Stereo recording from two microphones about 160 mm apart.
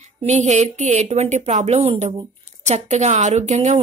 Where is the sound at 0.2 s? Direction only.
45° right (ahead or behind).